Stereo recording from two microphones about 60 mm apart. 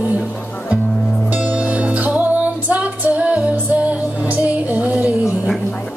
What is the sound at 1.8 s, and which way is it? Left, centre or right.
Music, right.